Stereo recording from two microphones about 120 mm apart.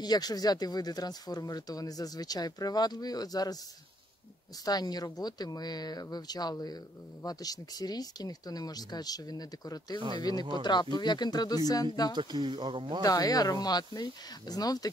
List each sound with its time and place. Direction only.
0.0 s speech: 35° left (ahead or behind)
4.6 s speech: 35° left (ahead or behind)
9.9 s speech: 45° right (ahead or behind)
10.6 s speech: 40° left (ahead or behind)
12.2 s speech: 40° right (ahead or behind)
13.0 s speech: 30° left (ahead or behind)